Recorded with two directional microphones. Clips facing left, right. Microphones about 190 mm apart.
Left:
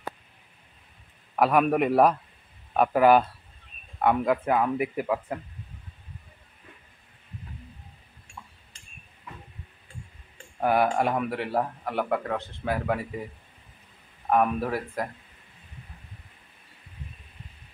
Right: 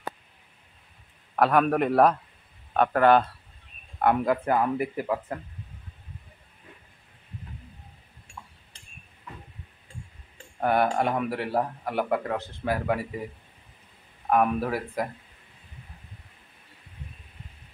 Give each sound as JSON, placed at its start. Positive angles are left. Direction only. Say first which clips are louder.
{"t": 1.3, "sound": "speech", "louder": "even", "side_deg": 5}
{"t": 10.6, "sound": "speech", "louder": "even", "side_deg": 5}
{"t": 14.3, "sound": "speech", "louder": "even", "side_deg": 0}